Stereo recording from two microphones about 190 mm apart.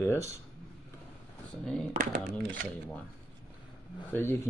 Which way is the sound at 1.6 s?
5° left (ahead or behind).